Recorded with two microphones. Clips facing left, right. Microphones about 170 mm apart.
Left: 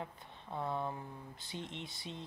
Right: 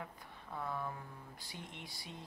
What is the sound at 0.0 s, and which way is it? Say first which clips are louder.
Speech: left 3 dB; 25° left (ahead or behind).